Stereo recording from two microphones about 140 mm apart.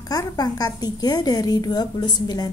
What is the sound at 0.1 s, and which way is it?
A woman's voice, 25° left (ahead or behind).